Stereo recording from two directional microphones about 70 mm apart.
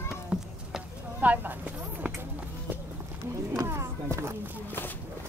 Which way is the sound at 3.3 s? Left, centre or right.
Right.